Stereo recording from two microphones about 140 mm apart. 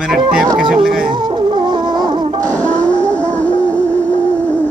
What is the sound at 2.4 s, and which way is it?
Music, 10° left (ahead or behind).